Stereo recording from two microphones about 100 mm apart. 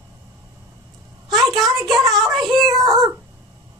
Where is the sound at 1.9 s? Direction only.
40° right (ahead or behind).